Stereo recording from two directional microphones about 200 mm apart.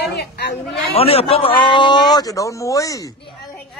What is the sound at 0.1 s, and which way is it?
Speech, 55° left (ahead or behind).